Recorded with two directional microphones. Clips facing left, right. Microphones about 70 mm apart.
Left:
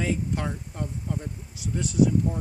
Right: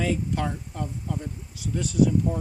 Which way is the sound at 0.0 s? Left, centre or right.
Centre.